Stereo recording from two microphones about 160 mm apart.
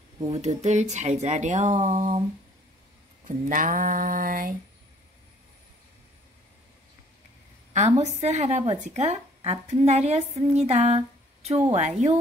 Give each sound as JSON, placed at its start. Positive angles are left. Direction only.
{"t": 0.3, "sound": "a woman's voice", "side_deg": -45}
{"t": 3.3, "sound": "a sound", "side_deg": -55}
{"t": 7.7, "sound": "a woman's voice", "side_deg": -45}